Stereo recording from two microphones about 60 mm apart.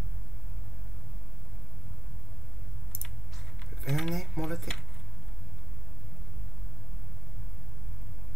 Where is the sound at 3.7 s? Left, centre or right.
Centre.